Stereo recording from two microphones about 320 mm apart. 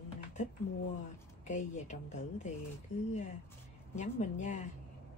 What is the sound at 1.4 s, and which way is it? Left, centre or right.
Speech, left.